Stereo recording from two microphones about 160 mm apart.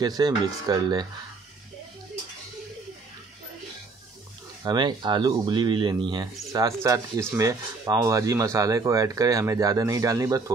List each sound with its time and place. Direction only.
0.0 s speech: 25° right (ahead or behind)
4.6 s speech: 30° right (ahead or behind)